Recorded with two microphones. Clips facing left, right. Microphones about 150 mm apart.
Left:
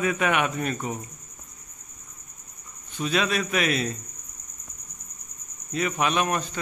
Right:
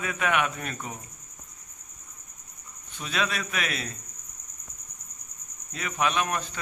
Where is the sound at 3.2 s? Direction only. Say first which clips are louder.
Left 6 dB; 5° left (ahead or behind).